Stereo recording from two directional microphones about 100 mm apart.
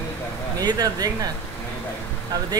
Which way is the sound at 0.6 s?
40° right (ahead or behind).